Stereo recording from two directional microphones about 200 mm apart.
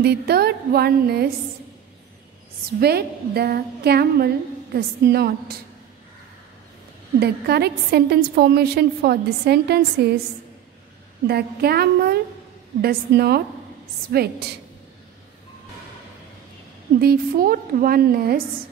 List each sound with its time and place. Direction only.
0.0 s a woman's voice: 55° right (ahead or behind)
2.8 s a woman's voice: 50° right (ahead or behind)
7.2 s a woman's voice: 55° right (ahead or behind)
11.2 s a woman's voice: 50° right (ahead or behind)
17.0 s a woman's voice: 50° right (ahead or behind)